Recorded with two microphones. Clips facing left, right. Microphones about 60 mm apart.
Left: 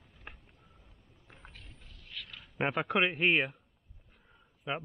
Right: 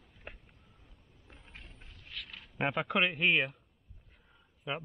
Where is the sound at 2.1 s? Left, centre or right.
Centre.